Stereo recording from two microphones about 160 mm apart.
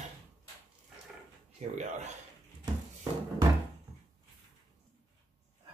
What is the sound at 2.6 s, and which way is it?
Music, 25° right (ahead or behind).